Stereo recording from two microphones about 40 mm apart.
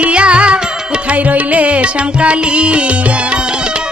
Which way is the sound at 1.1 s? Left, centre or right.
Right.